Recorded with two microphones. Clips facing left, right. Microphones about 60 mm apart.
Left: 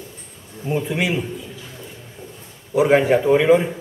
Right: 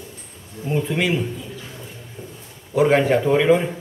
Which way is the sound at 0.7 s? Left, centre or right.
Centre.